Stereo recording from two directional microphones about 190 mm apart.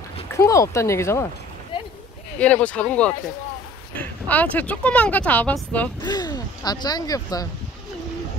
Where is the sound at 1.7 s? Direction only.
25° left (ahead or behind).